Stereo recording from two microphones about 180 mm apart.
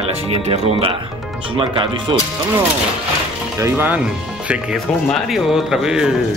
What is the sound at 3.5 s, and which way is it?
A man's voice, 15° right (ahead or behind).